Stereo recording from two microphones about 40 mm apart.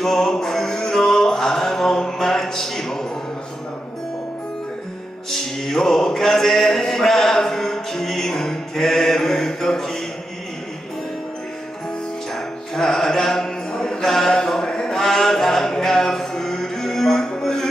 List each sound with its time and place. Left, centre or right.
0.0 s music: centre
5.3 s music: centre
12.7 s mantra: centre
14.0 s a sound: centre
15.0 s music: centre